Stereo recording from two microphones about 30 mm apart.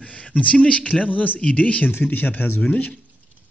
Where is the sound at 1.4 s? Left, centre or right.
Left.